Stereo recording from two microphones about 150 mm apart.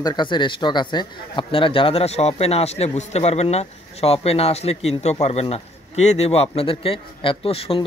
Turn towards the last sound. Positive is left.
turn(degrees=40)  # may be behind; listen again after turning